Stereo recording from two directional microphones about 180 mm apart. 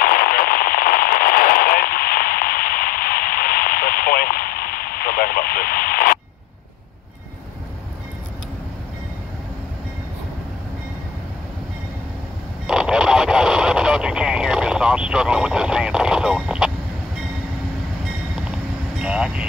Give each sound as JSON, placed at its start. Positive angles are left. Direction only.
{"t": 0.0, "sound": "radio", "side_deg": 50}
{"t": 12.6, "sound": "radio", "side_deg": -5}
{"t": 18.9, "sound": "vehicle", "side_deg": -5}